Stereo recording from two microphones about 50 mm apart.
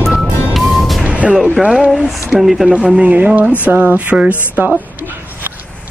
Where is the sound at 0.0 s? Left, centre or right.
Centre.